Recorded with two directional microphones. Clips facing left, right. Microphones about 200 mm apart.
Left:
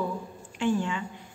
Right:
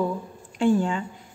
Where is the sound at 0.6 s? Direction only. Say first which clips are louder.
Right 6 dB; 35° right (ahead or behind).